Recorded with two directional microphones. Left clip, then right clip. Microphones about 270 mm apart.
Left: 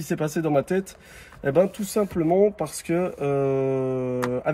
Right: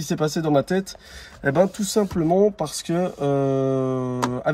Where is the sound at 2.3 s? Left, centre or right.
Centre.